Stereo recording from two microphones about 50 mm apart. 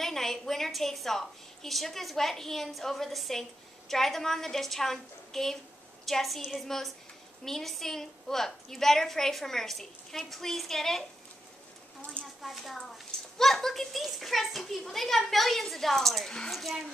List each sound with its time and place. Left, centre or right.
0.0 s a child's voice: centre
12.0 s a sound: left
12.4 s a child's voice: centre